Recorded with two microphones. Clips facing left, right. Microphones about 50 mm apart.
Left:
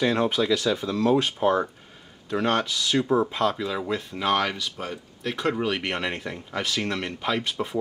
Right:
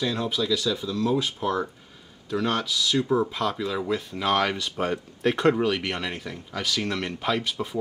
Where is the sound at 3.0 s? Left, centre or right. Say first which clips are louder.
Left 3 dB; centre.